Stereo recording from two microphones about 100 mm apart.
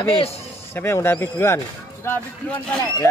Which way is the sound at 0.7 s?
25° left (ahead or behind).